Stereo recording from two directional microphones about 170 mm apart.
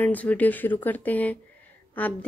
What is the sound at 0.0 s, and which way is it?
Speech, 10° left (ahead or behind).